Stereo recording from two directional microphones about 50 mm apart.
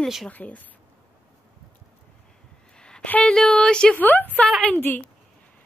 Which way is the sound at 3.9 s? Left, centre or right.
Left.